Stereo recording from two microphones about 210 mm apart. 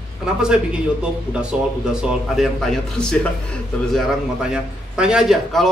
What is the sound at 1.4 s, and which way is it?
A man's voice, 5° right (ahead or behind).